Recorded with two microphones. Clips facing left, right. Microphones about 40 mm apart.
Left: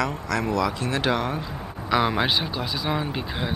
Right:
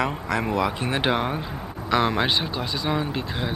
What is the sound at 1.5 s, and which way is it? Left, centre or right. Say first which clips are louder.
Speech: even; centre.